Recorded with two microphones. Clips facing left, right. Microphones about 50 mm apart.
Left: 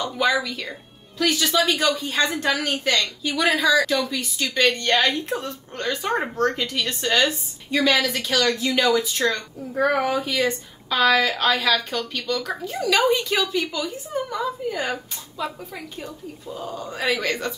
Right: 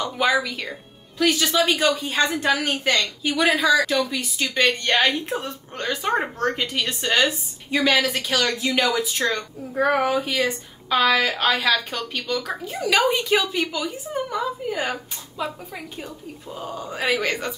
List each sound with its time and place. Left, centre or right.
0.0 s a woman's voice: centre
12.7 s a woman's voice: centre
14.8 s speech: right
16.7 s a woman's voice: centre